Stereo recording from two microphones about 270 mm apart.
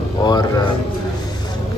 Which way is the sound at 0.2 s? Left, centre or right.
Centre.